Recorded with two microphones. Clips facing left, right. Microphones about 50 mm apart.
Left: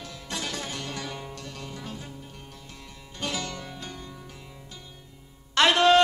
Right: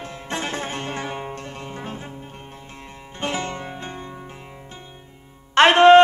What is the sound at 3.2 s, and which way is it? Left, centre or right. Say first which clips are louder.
Music: right 6 dB; right.